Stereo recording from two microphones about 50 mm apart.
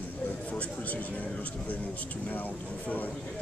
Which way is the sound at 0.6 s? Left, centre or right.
Left.